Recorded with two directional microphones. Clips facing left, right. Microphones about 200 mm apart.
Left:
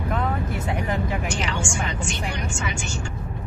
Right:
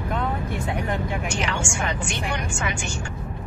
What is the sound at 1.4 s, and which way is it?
Speech, 55° right (ahead or behind).